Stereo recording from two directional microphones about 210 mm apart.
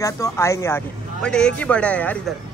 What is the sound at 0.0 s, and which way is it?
Speech, 15° left (ahead or behind).